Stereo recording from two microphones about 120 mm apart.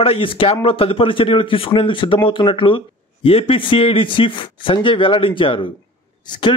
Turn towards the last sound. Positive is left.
turn(degrees=40)  # may be behind; listen again after turning